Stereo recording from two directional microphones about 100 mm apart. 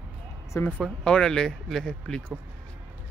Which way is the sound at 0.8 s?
10° left (ahead or behind).